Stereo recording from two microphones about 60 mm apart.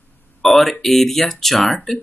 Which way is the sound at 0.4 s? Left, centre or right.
Centre.